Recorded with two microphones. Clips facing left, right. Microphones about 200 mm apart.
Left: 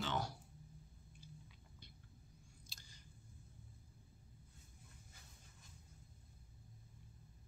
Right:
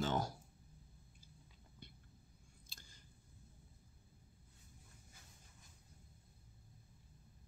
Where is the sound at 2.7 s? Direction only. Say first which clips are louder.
Even; 50° right (ahead or behind).